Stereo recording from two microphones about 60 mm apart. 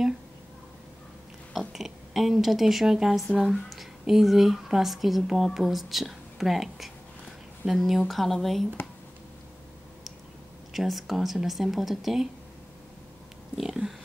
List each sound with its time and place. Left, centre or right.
1.5 s speech: centre
10.7 s speech: centre
13.6 s pig: centre